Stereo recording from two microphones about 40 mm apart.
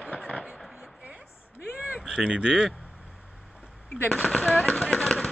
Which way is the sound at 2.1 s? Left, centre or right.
Right.